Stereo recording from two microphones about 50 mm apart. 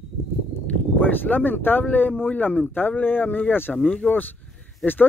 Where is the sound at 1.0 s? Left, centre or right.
Left.